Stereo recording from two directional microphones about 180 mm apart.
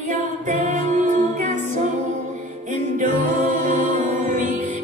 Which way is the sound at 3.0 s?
45° right (ahead or behind).